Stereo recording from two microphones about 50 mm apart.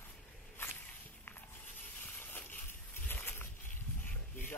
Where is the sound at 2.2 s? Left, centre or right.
Left.